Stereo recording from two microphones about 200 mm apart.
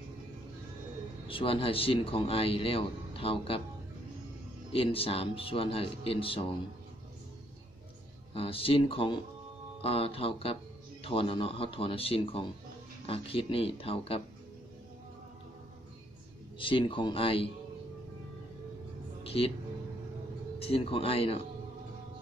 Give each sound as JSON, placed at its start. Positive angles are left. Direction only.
{"t": 1.2, "sound": "speech", "side_deg": 25}
{"t": 4.7, "sound": "speech", "side_deg": 30}
{"t": 8.4, "sound": "speech", "side_deg": 25}
{"t": 16.5, "sound": "speech", "side_deg": 25}
{"t": 19.2, "sound": "music", "side_deg": 30}
{"t": 20.5, "sound": "speech", "side_deg": 30}